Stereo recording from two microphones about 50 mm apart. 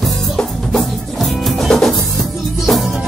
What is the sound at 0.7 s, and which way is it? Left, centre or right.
Music, centre.